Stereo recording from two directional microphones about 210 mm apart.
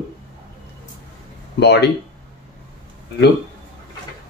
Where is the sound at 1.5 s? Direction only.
55° left (ahead or behind).